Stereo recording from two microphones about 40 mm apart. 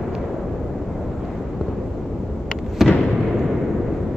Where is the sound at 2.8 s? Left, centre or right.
Centre.